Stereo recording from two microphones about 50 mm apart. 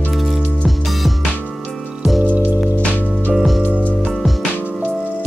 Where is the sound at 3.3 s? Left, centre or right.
Centre.